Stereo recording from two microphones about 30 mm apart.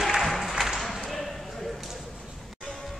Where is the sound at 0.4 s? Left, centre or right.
Centre.